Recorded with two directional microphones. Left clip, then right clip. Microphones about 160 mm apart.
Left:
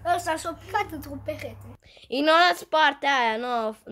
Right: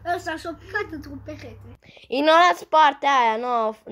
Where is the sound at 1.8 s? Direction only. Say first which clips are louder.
Right 3 dB; 20° right (ahead or behind).